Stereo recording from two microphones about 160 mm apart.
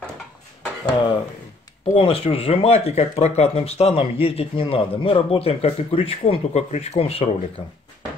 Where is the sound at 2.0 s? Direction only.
35° left (ahead or behind).